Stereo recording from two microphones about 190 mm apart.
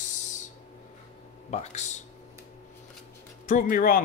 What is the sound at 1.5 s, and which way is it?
Speech, 35° left (ahead or behind).